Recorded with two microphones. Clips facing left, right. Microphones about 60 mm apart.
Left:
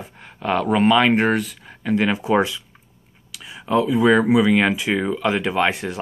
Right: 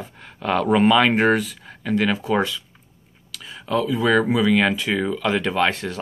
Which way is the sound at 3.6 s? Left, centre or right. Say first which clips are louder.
Left 4 dB; centre.